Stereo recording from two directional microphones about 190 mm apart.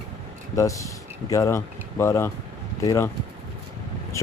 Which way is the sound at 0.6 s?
15° left (ahead or behind).